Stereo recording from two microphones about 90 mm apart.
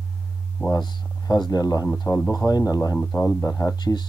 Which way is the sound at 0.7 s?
50° left (ahead or behind).